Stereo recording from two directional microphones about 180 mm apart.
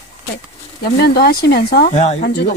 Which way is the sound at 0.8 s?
60° left (ahead or behind).